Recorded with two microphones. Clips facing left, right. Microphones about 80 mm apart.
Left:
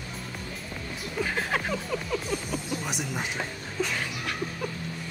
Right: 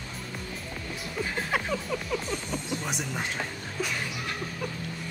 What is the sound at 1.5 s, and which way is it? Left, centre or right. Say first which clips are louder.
Music: even; centre.